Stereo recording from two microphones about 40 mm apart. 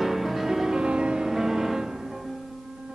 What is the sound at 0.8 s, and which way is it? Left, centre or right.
Music, right.